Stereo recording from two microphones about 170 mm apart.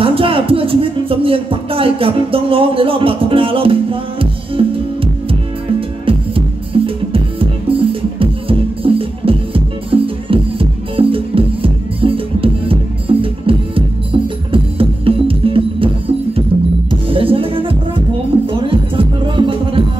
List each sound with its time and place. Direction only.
0.0 s speech: 30° right (ahead or behind)
5.8 s music: 30° right (ahead or behind)
16.9 s music: 30° right (ahead or behind)